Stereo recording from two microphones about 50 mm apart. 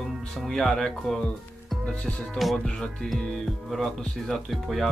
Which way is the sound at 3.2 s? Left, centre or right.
Centre.